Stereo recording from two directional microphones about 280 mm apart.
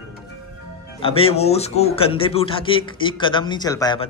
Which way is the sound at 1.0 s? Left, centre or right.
Centre.